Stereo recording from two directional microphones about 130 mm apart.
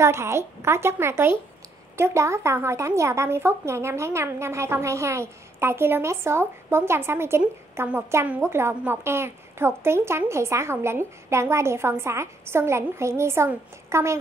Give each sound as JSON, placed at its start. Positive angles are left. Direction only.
{"t": 0.0, "sound": "speech", "side_deg": -20}